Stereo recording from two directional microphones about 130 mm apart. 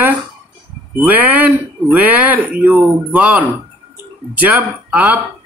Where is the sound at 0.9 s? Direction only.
15° right (ahead or behind).